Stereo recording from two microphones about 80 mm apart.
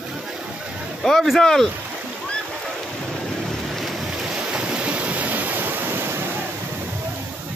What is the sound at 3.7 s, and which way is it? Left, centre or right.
Boat, centre.